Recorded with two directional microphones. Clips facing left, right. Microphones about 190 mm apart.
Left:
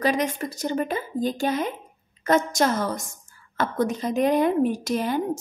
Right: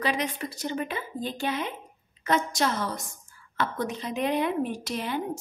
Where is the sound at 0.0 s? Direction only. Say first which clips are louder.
Left 5 dB; 45° left (ahead or behind).